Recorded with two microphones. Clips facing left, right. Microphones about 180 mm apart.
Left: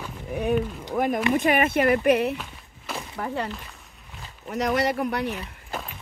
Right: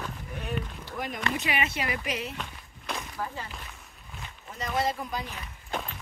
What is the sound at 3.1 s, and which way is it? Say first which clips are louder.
Speech: left 7 dB; 70° left (ahead or behind).